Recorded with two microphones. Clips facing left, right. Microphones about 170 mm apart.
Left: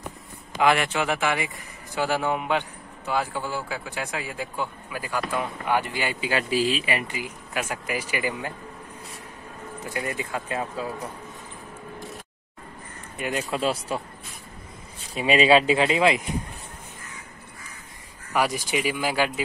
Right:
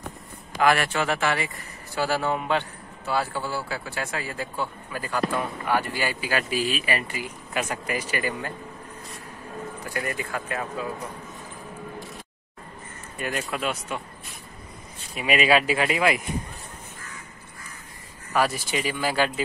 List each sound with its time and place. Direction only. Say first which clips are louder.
0.6 s speech: even; 20° left (ahead or behind)
7.5 s speech: right 1 dB; 5° left (ahead or behind)
9.9 s speech: even; 20° left (ahead or behind)
13.2 s speech: left 1 dB; 15° left (ahead or behind)
13.5 s speech: left 3 dB; 30° left (ahead or behind)
15.1 s speech: left 3 dB; 30° left (ahead or behind)
18.3 s speech: even; 15° left (ahead or behind)